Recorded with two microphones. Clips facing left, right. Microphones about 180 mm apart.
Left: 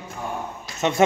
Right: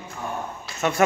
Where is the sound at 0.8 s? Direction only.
20° left (ahead or behind).